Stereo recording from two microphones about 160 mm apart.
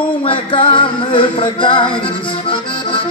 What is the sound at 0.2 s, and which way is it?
Music, 35° left (ahead or behind).